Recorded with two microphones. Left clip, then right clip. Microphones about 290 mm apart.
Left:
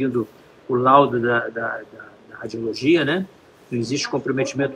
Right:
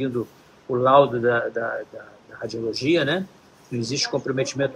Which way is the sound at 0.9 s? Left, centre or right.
Left.